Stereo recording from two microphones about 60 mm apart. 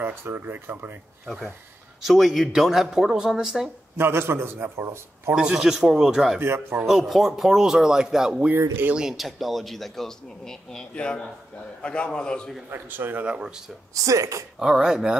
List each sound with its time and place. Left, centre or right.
0.0 s speech: right
1.2 s a man's voice: centre
3.9 s a man's voice: right
5.3 s speech: centre
6.4 s speech: right
6.9 s a man's voice: centre
12.6 s speech: right
13.3 s speech: centre
13.9 s speech: right
14.6 s speech: centre